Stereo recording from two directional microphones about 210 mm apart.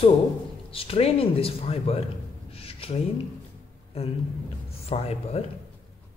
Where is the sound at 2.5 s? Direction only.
25° left (ahead or behind).